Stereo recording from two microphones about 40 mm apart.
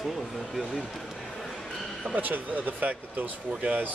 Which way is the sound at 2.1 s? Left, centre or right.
Right.